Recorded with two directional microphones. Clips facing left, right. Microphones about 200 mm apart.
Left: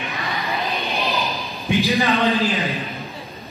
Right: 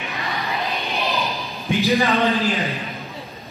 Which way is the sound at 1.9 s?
15° left (ahead or behind).